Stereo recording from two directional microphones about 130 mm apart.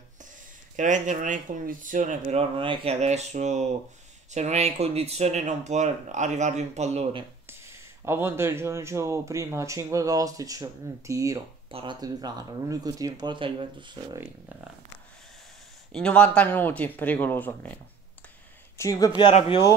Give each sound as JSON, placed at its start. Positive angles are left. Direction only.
{"t": 0.7, "sound": "speech", "side_deg": -70}
{"t": 2.3, "sound": "speech", "side_deg": -40}
{"t": 7.4, "sound": "speech", "side_deg": -20}
{"t": 11.7, "sound": "speech", "side_deg": -40}
{"t": 15.9, "sound": "speech", "side_deg": 5}
{"t": 18.8, "sound": "speech", "side_deg": 25}